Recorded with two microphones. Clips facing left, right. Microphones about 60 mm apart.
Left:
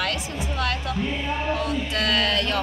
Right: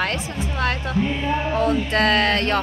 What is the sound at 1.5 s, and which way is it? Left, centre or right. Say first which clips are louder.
Speech: right 6 dB; right.